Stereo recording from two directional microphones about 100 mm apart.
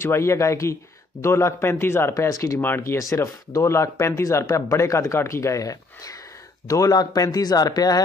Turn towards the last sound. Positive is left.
turn(degrees=40)  # may be behind; listen again after turning